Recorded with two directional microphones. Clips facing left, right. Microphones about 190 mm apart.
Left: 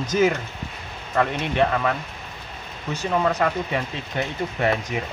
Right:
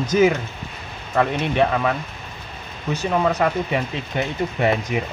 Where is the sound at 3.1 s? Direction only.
15° right (ahead or behind).